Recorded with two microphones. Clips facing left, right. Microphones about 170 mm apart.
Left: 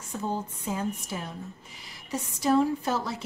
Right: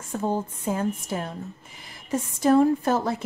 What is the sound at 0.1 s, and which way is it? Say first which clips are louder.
Speech: right 5 dB; 50° right (ahead or behind).